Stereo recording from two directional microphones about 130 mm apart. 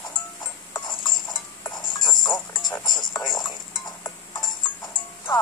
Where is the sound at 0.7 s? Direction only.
35° left (ahead or behind).